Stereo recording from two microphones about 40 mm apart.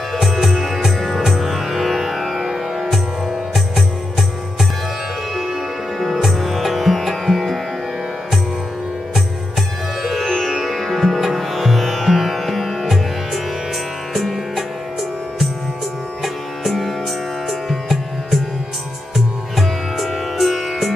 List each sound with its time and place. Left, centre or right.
0.2 s music: centre
5.3 s music: centre
10.2 s music: centre
10.5 s sitar: centre
14.1 s music: centre
16.2 s music: centre